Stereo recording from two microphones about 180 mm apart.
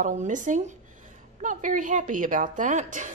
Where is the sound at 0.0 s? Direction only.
45° right (ahead or behind).